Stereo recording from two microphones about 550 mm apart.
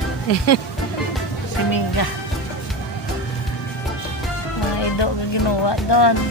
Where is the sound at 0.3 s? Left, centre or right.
Left.